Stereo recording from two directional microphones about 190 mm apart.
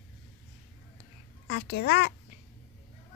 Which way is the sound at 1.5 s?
60° left (ahead or behind).